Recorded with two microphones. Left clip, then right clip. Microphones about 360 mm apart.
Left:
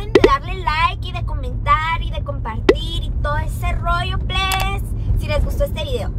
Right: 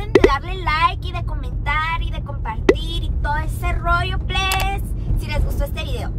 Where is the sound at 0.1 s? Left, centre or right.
Centre.